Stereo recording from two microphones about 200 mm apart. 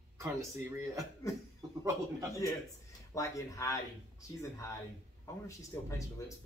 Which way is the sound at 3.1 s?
15° left (ahead or behind).